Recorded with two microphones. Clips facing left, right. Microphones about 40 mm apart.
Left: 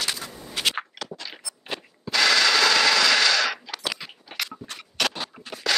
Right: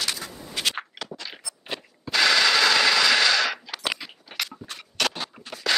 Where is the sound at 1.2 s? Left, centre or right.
Centre.